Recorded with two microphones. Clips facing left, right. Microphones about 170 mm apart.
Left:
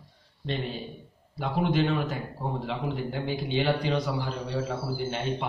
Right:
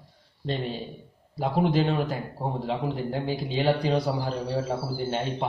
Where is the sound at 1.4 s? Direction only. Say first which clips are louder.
Right 2 dB; 30° right (ahead or behind).